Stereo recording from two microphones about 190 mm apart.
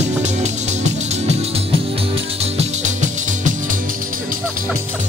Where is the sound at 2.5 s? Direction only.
40° right (ahead or behind).